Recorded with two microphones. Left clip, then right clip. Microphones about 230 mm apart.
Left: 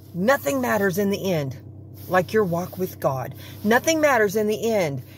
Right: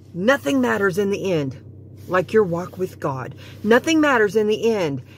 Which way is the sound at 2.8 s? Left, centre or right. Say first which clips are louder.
Left 1 dB; left.